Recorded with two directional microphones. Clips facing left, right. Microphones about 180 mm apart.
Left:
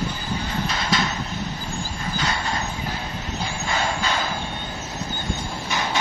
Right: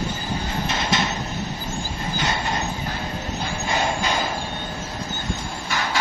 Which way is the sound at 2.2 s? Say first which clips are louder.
Right 1 dB; 20° right (ahead or behind).